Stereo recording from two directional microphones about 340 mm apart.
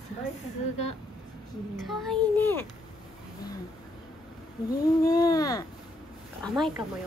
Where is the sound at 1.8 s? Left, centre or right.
Centre.